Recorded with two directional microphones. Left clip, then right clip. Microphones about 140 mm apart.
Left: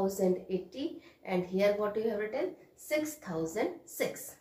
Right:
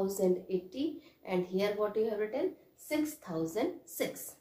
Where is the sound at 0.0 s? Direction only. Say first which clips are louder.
Left 1 dB; 35° right (ahead or behind).